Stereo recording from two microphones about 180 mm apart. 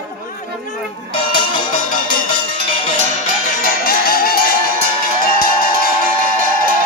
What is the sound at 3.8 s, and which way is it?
Music, 55° left (ahead or behind).